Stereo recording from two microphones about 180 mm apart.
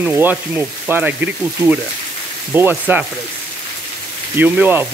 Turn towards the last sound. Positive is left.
turn(degrees=-10)  # may be behind; listen again after turning